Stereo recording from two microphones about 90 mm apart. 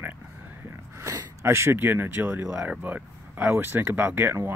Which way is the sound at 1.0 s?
35° right (ahead or behind).